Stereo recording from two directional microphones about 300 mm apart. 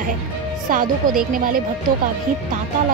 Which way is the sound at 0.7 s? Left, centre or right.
Right.